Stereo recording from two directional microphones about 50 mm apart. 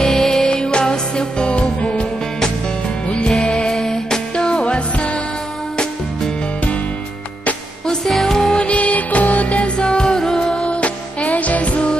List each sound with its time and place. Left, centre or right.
0.0 s music: centre
3.6 s music: centre
7.8 s music: centre; by 9.7 s left
9.8 s music: centre